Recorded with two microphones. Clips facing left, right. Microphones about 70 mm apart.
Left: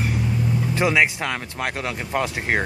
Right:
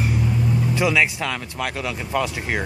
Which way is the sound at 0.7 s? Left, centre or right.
Left.